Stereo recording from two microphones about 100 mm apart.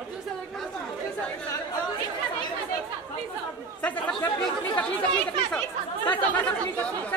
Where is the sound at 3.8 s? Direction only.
10° left (ahead or behind).